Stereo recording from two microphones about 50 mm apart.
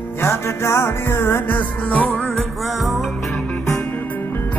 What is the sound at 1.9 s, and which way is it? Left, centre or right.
Music, left.